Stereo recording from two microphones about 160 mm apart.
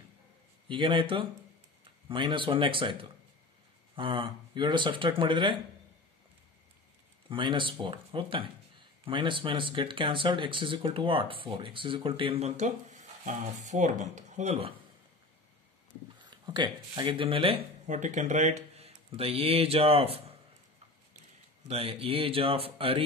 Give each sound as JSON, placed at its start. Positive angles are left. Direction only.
{"t": 0.7, "sound": "speech", "side_deg": -30}
{"t": 7.2, "sound": "speech", "side_deg": -30}
{"t": 16.2, "sound": "speech", "side_deg": -25}
{"t": 17.8, "sound": "speech", "side_deg": -50}
{"t": 21.6, "sound": "speech", "side_deg": -35}